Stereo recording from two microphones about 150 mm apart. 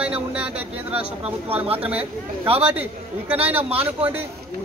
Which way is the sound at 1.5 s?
40° right (ahead or behind).